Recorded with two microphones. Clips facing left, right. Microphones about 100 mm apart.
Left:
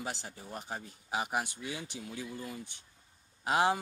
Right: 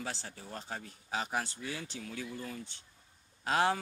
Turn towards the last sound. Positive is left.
turn(degrees=15)  # may be behind; listen again after turning